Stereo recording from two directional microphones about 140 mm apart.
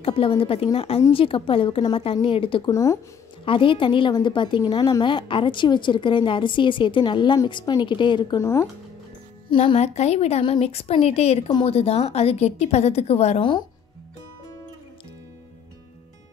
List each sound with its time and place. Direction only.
0.0 s a woman's voice: 40° left (ahead or behind)
2.7 s speech: 25° left (ahead or behind)
3.4 s a woman's voice: 35° left (ahead or behind)
8.4 s speech: 20° left (ahead or behind)
9.5 s a woman's voice: 35° left (ahead or behind)
9.8 s a woman's voice: 50° left (ahead or behind)